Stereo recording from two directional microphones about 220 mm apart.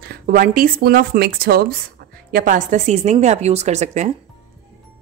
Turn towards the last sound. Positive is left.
turn(degrees=-30)  # may be behind; listen again after turning